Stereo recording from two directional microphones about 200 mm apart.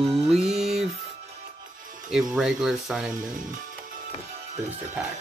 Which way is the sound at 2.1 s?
Centre (ahead or behind).